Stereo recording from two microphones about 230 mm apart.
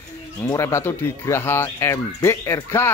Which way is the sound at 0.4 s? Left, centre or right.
Centre.